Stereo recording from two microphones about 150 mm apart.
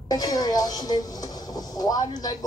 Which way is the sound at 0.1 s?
25° left (ahead or behind).